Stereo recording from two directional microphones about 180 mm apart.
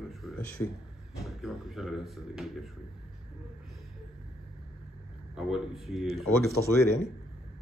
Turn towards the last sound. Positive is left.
turn(degrees=-60)  # may be behind; listen again after turning